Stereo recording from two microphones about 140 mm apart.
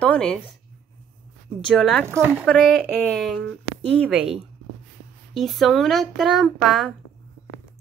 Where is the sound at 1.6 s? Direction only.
5° left (ahead or behind).